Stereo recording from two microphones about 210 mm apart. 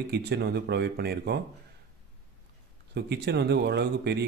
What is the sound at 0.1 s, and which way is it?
Speech, 50° right (ahead or behind).